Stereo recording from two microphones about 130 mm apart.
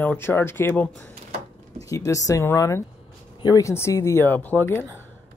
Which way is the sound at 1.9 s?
25° left (ahead or behind).